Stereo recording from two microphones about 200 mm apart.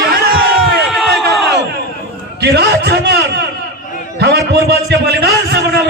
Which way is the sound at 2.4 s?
55° right (ahead or behind).